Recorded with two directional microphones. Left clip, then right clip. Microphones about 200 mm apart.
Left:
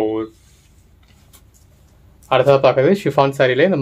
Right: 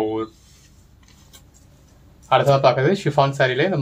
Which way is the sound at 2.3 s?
45° left (ahead or behind).